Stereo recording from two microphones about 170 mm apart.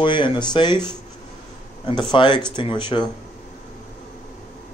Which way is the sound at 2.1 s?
30° left (ahead or behind).